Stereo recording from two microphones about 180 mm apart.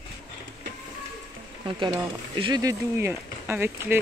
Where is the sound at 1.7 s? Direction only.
25° right (ahead or behind).